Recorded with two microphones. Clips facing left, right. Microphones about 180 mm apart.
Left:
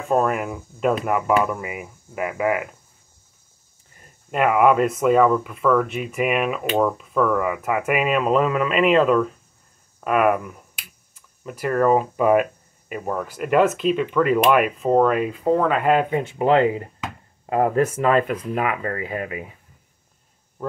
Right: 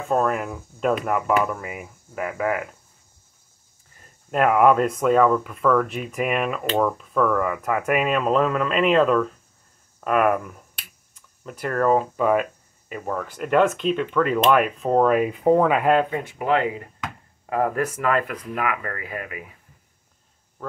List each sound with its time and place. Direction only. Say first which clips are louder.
0.1 s speech: left 2 dB; 5° left (ahead or behind)
4.3 s speech: even; 5° left (ahead or behind)
16.1 s speech: left 4 dB; 25° left (ahead or behind)